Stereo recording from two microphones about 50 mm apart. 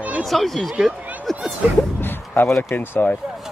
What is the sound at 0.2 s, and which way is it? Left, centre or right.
Speech, centre.